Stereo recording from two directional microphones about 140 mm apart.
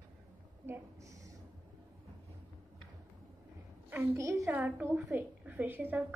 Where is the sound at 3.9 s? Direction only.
15° right (ahead or behind).